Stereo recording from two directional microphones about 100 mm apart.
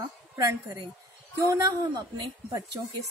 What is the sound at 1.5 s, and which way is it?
A woman's voice, 40° right (ahead or behind).